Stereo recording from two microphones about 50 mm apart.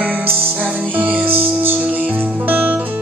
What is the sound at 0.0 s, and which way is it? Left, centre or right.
Music, right.